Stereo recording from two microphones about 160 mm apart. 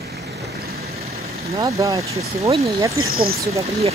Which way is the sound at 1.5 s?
20° right (ahead or behind).